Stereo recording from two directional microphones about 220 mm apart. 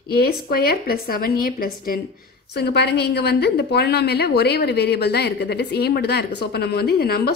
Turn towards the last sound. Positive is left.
turn(degrees=45)  # may be behind; listen again after turning